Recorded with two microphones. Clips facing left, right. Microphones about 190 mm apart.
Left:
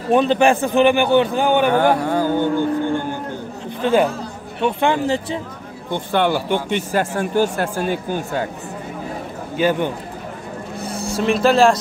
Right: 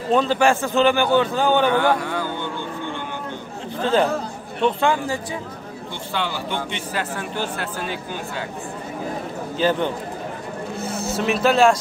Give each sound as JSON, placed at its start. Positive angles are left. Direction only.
{"t": 0.1, "sound": "a man's voice", "side_deg": 20}
{"t": 1.7, "sound": "speech", "side_deg": 45}
{"t": 3.8, "sound": "a man's voice", "side_deg": 10}
{"t": 5.9, "sound": "speech", "side_deg": 55}
{"t": 9.6, "sound": "a man's voice", "side_deg": 10}
{"t": 11.1, "sound": "speech", "side_deg": -5}